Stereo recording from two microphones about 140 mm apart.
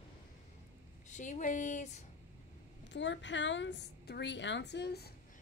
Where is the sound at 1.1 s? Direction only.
60° left (ahead or behind).